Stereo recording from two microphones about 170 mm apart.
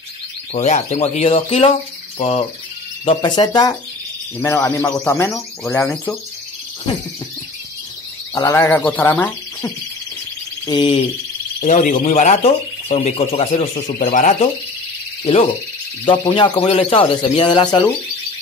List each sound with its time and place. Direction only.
0.5 s speech: 40° left (ahead or behind)
2.1 s bird: 35° left (ahead or behind)
3.1 s a man's voice: 25° left (ahead or behind)
8.4 s speech: 20° left (ahead or behind)
10.7 s speech: 30° left (ahead or behind)
11.6 s speech: 45° left (ahead or behind)
13.8 s speech: 50° left (ahead or behind)
16.1 s a man's voice: 30° left (ahead or behind)